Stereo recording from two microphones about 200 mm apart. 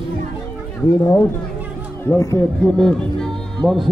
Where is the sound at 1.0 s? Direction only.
10° left (ahead or behind).